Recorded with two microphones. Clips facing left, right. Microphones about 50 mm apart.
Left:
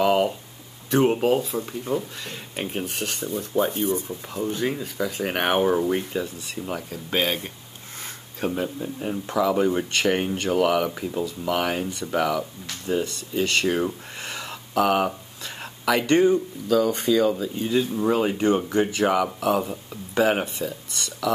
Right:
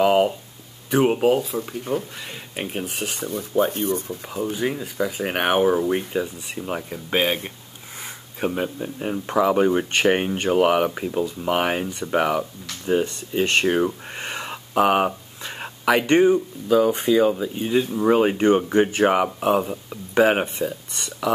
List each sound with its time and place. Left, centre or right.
0.0 s a sound: centre
0.8 s speech: centre
8.6 s speech: right